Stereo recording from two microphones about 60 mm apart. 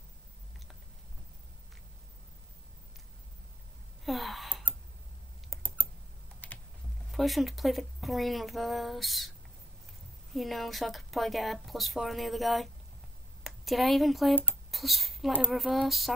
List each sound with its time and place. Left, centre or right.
4.0 s gasp: centre
4.7 s a sound: left
5.5 s typing: centre
6.4 s typing: left
7.1 s a woman's voice: centre
10.3 s a woman's voice: centre